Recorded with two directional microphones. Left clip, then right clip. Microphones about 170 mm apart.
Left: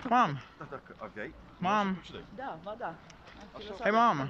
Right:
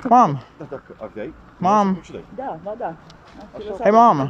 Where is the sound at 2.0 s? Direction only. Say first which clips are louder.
Right 11 dB; 60° right (ahead or behind).